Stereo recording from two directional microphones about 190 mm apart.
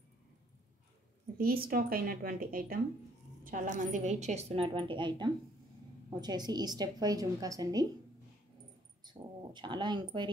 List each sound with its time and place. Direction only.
1.4 s a woman's voice: 50° right (ahead or behind); by 7.8 s 20° right (ahead or behind)
9.0 s a woman's voice: 25° right (ahead or behind)